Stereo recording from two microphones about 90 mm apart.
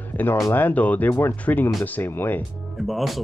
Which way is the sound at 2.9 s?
Centre (ahead or behind).